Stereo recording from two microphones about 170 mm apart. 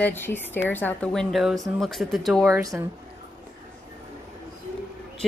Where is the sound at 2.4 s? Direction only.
20° right (ahead or behind).